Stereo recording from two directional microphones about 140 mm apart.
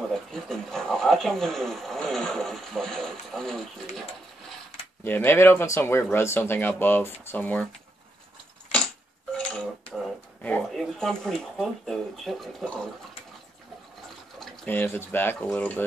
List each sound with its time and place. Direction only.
0.1 s a sound: 5° left (ahead or behind)
5.0 s speech: 15° left (ahead or behind)
9.4 s dishes: 5° left (ahead or behind)
10.8 s speech: centre (ahead or behind)
14.7 s speech: 15° left (ahead or behind)